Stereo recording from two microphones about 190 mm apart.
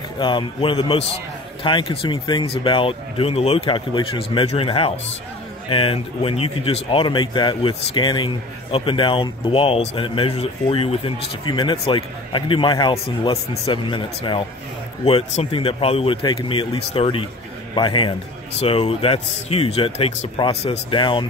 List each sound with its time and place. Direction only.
0.2 s speech: 25° left (ahead or behind)